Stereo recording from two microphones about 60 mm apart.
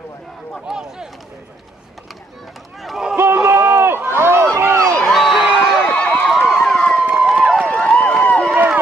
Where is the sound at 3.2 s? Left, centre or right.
Right.